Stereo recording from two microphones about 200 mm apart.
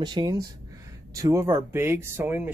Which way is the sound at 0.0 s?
20° right (ahead or behind).